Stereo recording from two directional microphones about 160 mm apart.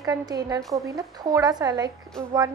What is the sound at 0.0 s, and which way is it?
Speech, 25° right (ahead or behind).